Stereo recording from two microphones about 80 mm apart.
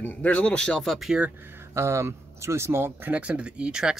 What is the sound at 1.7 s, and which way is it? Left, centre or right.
Speech, right.